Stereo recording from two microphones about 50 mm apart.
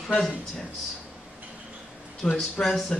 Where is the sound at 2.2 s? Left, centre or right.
Centre.